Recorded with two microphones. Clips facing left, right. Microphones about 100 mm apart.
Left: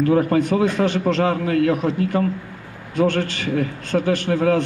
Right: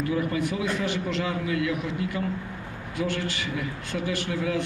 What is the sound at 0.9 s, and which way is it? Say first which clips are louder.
Speech: left 9 dB; 60° left (ahead or behind).